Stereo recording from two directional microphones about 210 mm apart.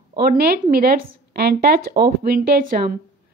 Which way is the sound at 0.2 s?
45° right (ahead or behind).